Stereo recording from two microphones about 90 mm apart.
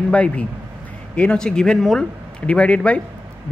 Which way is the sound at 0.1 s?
15° left (ahead or behind).